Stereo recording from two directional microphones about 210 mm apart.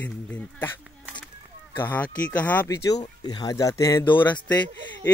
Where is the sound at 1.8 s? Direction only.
10° left (ahead or behind).